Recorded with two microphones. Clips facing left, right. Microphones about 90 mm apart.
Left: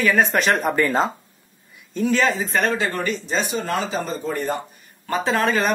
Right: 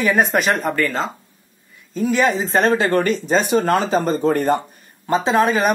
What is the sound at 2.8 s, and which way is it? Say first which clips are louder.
Speech: right 6 dB; 45° right (ahead or behind).